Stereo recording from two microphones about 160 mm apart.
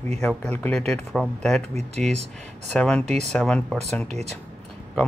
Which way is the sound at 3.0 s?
45° right (ahead or behind).